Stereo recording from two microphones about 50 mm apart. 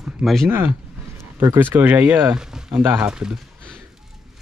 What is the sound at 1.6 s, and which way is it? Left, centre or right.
Speech, right.